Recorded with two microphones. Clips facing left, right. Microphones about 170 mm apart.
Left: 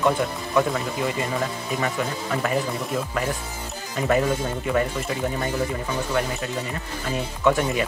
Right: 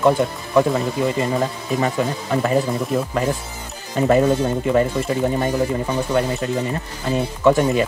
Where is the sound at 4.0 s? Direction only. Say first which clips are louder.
Right 6 dB; 30° right (ahead or behind).